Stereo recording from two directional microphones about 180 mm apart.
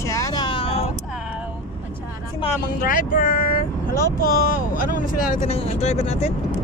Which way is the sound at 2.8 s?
50° left (ahead or behind).